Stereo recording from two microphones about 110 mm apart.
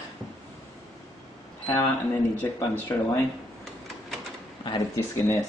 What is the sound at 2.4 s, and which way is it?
Speech, 20° left (ahead or behind).